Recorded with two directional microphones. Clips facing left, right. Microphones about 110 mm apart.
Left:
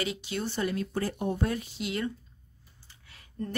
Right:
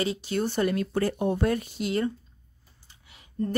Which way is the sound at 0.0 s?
35° right (ahead or behind).